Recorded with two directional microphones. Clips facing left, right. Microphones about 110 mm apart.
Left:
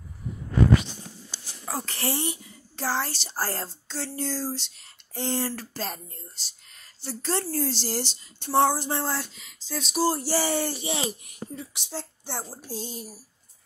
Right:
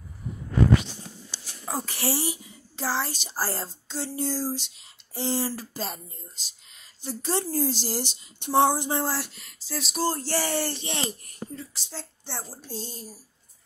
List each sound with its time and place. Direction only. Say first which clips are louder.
1.7 s speech: right 1 dB; 10° right (ahead or behind)
7.2 s speech: right 1 dB; 15° right (ahead or behind)
9.1 s speech: even; centre (ahead or behind); by 13.1 s 15° left (ahead or behind)